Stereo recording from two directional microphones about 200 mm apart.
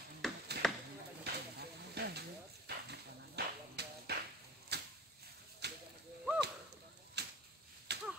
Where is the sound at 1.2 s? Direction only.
55° right (ahead or behind).